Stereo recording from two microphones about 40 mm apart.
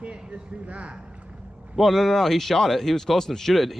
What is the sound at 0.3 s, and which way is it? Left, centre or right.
Speech, right.